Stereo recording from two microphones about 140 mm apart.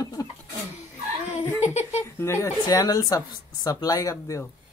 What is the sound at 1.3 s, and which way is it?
Speech, 50° left (ahead or behind).